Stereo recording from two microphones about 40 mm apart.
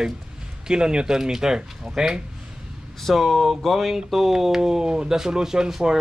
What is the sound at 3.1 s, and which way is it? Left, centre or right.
Speech, centre.